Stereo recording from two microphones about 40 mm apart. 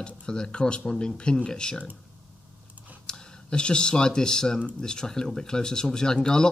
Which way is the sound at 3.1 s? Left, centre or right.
Left.